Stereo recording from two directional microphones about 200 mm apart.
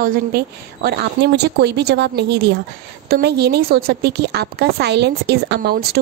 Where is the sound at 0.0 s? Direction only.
45° right (ahead or behind).